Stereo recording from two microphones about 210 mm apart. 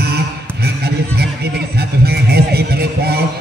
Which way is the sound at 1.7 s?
50° right (ahead or behind).